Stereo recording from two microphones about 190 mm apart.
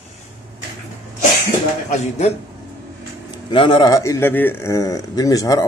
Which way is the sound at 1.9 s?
35° left (ahead or behind).